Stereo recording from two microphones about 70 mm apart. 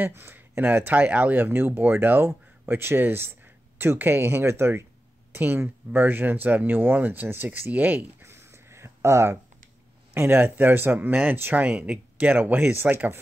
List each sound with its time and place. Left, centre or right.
0.1 s speech: right
8.2 s a sound: right
10.1 s speech: right
11.6 s speech: centre